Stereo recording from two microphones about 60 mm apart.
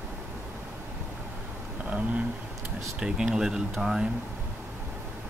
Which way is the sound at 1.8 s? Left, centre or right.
Right.